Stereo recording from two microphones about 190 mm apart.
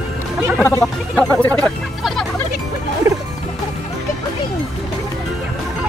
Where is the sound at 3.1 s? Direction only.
15° right (ahead or behind).